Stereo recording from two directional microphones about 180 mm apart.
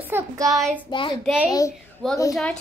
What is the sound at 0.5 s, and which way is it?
Speech, centre (ahead or behind).